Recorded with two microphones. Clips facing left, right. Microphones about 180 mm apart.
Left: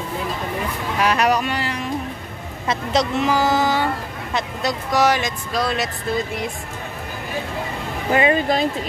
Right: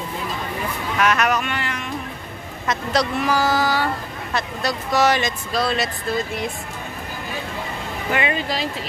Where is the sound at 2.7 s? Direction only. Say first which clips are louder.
Left 1 dB; 25° left (ahead or behind).